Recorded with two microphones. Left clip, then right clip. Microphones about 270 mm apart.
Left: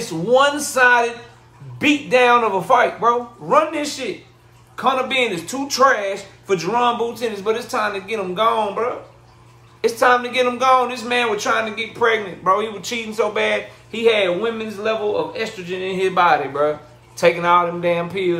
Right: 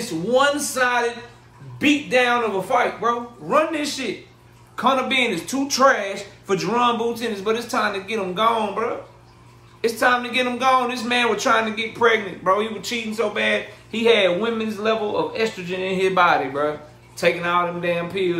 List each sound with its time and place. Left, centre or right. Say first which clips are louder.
0.0 s a man's voice: left 3 dB; centre